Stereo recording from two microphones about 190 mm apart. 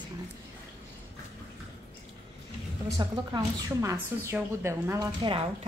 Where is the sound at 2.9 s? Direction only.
20° right (ahead or behind).